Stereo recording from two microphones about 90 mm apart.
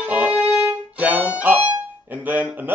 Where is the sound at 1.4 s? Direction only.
15° right (ahead or behind).